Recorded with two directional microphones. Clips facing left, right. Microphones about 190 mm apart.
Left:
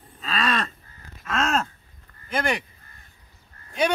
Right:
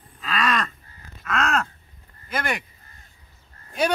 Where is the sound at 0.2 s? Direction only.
30° left (ahead or behind).